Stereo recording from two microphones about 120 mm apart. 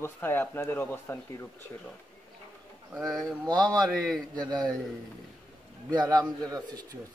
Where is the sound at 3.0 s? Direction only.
Centre (ahead or behind).